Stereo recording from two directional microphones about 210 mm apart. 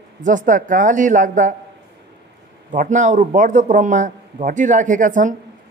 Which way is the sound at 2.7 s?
35° right (ahead or behind).